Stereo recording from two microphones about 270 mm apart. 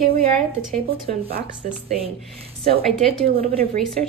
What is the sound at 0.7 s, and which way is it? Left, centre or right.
A woman's voice, right.